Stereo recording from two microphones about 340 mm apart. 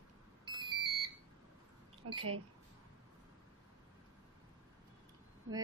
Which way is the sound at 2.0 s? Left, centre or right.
Right.